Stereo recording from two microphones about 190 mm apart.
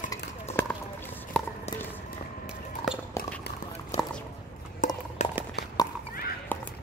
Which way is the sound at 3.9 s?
35° left (ahead or behind).